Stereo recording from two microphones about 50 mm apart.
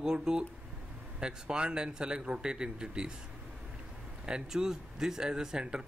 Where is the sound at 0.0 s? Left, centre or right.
Centre.